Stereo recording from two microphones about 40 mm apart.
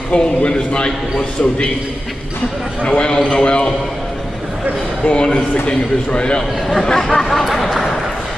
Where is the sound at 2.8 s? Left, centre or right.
Left.